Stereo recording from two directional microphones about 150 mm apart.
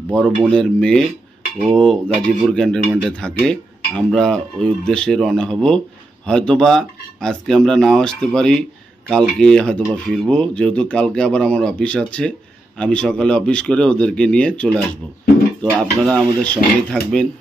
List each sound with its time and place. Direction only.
0.1 s speech: 5° left (ahead or behind)
15.8 s speech: 5° left (ahead or behind)